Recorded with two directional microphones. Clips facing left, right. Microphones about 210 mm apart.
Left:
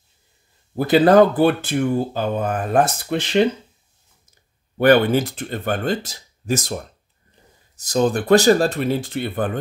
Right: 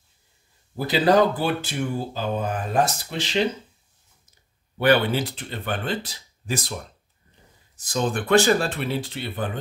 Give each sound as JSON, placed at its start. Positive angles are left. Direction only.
{"t": 0.7, "sound": "speech", "side_deg": 55}
{"t": 4.7, "sound": "speech", "side_deg": 50}